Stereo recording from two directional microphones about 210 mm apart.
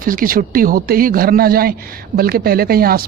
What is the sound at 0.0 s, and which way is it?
Speech, 40° right (ahead or behind).